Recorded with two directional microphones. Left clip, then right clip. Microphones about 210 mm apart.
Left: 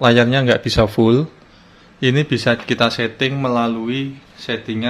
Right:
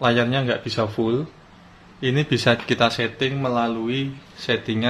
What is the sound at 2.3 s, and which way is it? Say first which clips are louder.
A man's voice: left 2 dB; 10° left (ahead or behind).